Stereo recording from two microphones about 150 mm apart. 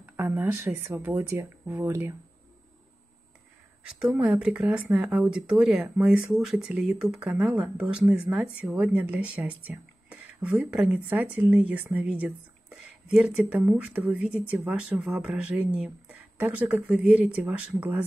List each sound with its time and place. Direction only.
0.1 s speech: 15° right (ahead or behind)
4.0 s speech: 10° right (ahead or behind)